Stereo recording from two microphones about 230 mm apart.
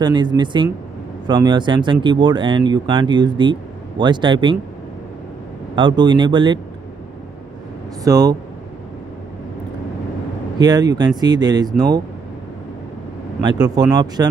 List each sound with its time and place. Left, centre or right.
0.0 s speech: centre
5.8 s speech: centre
8.0 s speech: centre
10.6 s speech: centre
13.4 s speech: centre